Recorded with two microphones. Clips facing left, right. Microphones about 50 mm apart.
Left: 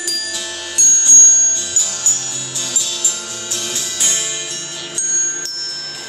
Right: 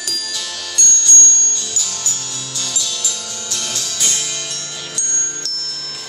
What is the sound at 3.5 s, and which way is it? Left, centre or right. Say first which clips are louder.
Music: even; left.